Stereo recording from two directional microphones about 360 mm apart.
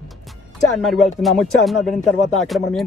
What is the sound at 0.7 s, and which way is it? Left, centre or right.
Speech, centre.